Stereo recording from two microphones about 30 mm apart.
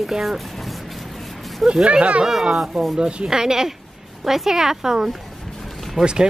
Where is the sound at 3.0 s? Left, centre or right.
Right.